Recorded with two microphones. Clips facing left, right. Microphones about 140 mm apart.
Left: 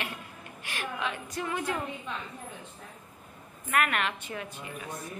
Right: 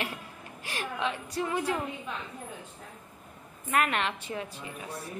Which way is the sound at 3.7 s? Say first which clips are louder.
Right 1 dB; 25° right (ahead or behind).